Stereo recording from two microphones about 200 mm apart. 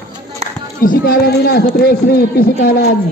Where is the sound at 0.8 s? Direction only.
45° left (ahead or behind).